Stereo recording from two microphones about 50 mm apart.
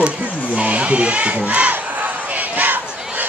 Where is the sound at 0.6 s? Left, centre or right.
Right.